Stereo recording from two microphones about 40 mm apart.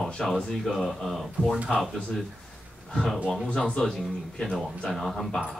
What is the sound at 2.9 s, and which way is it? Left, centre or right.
Speech, centre.